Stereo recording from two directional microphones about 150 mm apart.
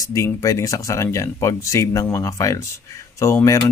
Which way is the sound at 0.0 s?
20° left (ahead or behind).